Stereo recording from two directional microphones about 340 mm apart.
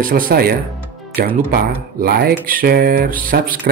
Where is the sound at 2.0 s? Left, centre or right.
Right.